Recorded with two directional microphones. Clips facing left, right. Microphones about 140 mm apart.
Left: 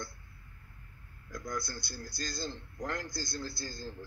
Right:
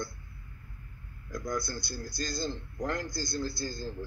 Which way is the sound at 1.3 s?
30° right (ahead or behind).